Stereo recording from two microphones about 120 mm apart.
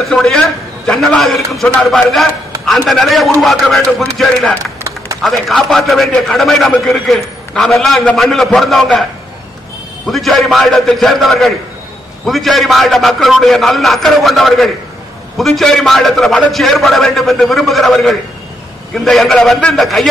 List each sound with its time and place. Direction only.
0.0 s a man's voice: 5° left (ahead or behind)
4.8 s a sound: 25° right (ahead or behind)
5.2 s a man's voice: centre (ahead or behind)
10.0 s a man's voice: centre (ahead or behind)